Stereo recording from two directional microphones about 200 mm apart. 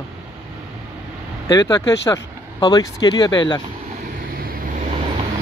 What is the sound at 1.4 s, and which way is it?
Speech, 15° left (ahead or behind).